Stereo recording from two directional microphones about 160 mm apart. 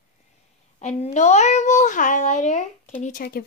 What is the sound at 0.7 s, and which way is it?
A child's voice, 45° left (ahead or behind).